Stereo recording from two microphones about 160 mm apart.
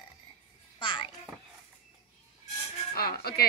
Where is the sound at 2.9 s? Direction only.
75° left (ahead or behind).